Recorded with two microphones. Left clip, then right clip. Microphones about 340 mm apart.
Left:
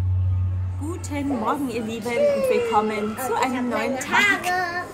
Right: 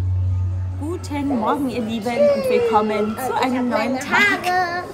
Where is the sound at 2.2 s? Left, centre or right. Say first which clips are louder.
Right 4 dB; right.